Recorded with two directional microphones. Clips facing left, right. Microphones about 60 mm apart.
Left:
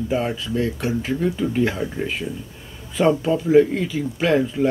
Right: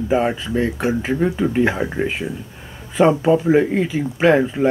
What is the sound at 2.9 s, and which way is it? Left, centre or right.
Speech, right.